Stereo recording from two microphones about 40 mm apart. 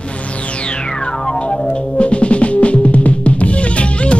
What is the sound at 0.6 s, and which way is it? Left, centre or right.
Music, left.